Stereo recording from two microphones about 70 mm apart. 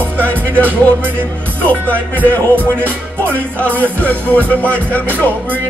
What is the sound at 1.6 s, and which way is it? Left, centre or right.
Music, left.